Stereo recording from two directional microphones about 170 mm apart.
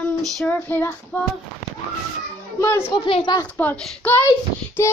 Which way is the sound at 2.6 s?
15° left (ahead or behind).